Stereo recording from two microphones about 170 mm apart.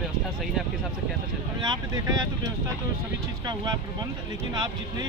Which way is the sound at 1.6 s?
25° right (ahead or behind).